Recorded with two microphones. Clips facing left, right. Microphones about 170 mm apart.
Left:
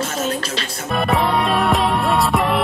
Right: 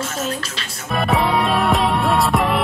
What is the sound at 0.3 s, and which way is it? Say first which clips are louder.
Speech: left 4 dB; 35° left (ahead or behind).